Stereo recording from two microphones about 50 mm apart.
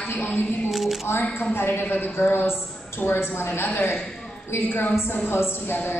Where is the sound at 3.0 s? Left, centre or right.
Centre.